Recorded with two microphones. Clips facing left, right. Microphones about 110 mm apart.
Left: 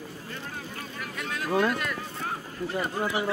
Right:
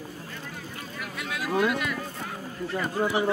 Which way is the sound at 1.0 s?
5° right (ahead or behind).